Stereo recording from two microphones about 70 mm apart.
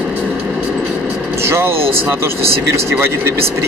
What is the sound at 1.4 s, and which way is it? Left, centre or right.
Speech, right.